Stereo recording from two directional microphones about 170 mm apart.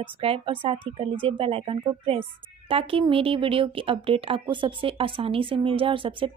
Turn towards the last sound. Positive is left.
turn(degrees=-30)  # may be behind; listen again after turning